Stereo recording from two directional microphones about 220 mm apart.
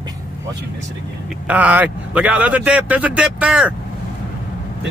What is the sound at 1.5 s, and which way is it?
Speech, 5° right (ahead or behind).